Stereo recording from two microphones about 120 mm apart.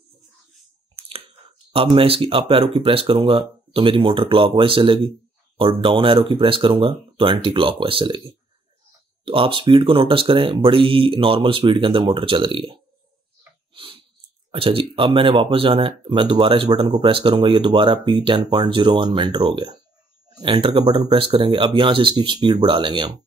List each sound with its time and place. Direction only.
1.7 s speech: 50° right (ahead or behind)
9.2 s speech: 50° right (ahead or behind)
13.7 s a sound: 50° right (ahead or behind)
14.5 s speech: 50° right (ahead or behind)